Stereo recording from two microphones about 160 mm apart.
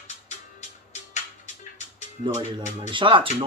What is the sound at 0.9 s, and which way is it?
Music, 50° left (ahead or behind).